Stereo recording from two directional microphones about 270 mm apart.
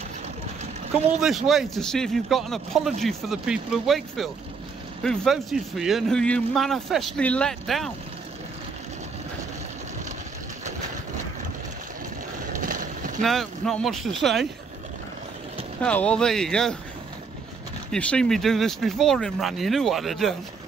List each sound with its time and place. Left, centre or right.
1.2 s speech: centre
12.5 s a sound: right
13.2 s speech: centre
15.8 s speech: centre
17.9 s speech: centre